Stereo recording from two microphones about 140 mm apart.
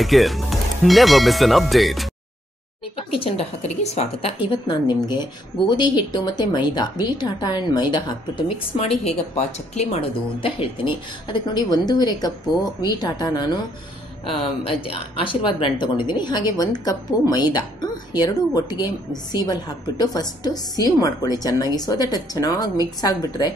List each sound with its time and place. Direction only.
0.0 s speech: centre (ahead or behind)
3.1 s a woman's voice: 45° left (ahead or behind)
4.6 s speech: 30° left (ahead or behind)
8.7 s a woman's voice: 50° left (ahead or behind); by 13.5 s 30° left (ahead or behind)
15.2 s a woman's voice: 35° left (ahead or behind)